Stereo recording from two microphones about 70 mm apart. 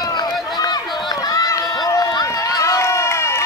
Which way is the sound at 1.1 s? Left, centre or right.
Left.